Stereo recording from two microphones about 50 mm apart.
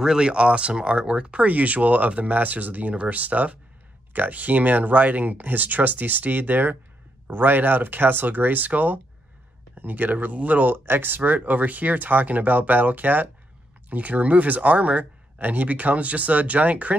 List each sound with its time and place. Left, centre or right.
0.0 s speech: centre